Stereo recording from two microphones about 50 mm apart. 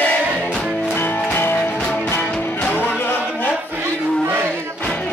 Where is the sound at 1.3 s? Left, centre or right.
Left.